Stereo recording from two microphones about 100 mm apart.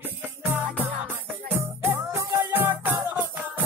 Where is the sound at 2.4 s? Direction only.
20° right (ahead or behind).